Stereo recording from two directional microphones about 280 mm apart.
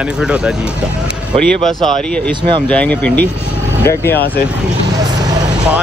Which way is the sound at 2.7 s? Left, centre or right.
Centre.